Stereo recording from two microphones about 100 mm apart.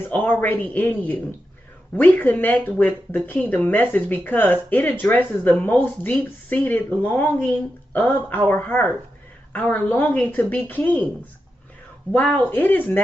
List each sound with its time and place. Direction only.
0.1 s speech: 15° left (ahead or behind)
12.1 s speech: 15° left (ahead or behind)